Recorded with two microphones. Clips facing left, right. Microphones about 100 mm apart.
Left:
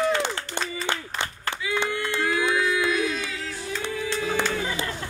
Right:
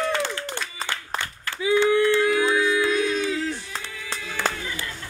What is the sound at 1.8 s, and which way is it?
Singing, 15° left (ahead or behind).